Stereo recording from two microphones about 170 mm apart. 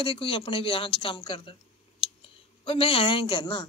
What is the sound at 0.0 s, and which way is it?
Speech, 30° left (ahead or behind).